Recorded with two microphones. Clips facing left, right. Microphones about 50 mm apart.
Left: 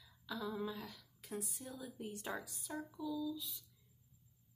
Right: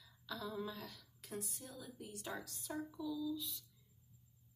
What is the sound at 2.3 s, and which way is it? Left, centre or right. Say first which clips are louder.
A woman's voice: right 1 dB; centre.